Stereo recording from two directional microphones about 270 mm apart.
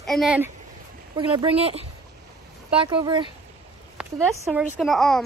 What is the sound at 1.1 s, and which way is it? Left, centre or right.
Speech, centre.